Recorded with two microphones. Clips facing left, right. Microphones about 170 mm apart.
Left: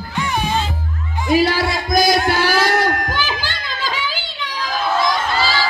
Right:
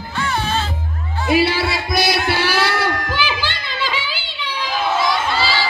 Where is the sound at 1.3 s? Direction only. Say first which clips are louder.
Left 1 dB; 45° left (ahead or behind).